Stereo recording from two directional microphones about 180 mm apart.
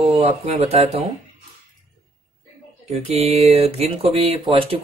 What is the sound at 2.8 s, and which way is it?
Speech, 35° right (ahead or behind).